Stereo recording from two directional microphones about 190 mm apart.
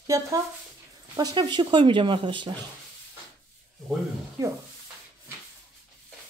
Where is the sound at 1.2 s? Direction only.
25° right (ahead or behind).